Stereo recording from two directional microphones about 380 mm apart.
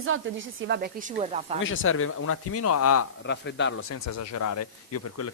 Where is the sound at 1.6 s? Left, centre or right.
Left.